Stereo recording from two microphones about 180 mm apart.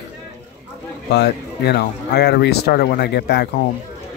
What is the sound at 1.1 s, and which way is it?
Speech, 65° left (ahead or behind).